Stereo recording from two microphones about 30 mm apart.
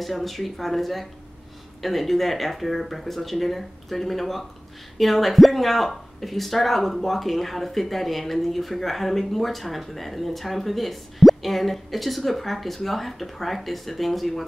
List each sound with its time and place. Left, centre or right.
0.0 s speech: centre